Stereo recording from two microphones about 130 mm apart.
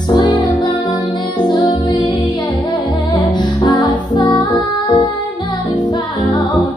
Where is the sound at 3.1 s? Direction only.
35° left (ahead or behind).